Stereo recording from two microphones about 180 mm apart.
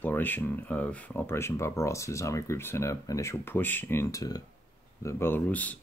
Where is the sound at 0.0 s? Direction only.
10° left (ahead or behind).